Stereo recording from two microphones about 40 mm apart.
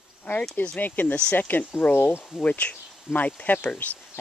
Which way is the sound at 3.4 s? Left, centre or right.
Left.